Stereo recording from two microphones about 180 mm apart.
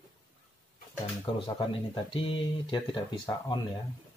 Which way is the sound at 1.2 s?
30° left (ahead or behind).